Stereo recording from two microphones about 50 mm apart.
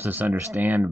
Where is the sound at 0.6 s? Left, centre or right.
Right.